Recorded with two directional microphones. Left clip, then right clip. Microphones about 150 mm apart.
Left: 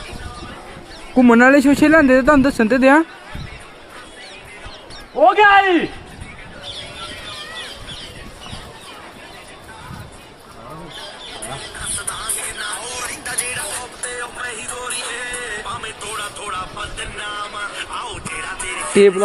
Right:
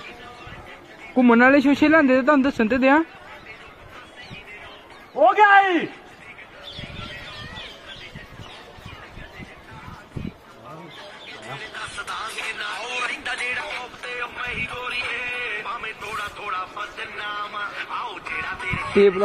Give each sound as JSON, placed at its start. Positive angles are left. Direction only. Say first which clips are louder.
{"t": 1.1, "sound": "speech", "louder": "left 4 dB", "side_deg": 0}
{"t": 5.1, "sound": "a sound", "louder": "left 3 dB", "side_deg": -5}
{"t": 12.1, "sound": "music", "louder": "left 1 dB", "side_deg": -20}
{"t": 14.2, "sound": "music", "louder": "even", "side_deg": -5}